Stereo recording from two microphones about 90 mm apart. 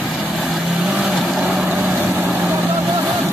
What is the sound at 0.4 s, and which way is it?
Vehicle, centre (ahead or behind).